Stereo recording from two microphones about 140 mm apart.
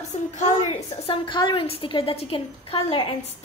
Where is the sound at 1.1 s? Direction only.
35° left (ahead or behind).